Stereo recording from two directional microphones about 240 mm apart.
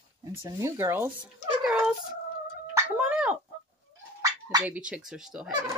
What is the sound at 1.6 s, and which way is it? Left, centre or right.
Dog, centre.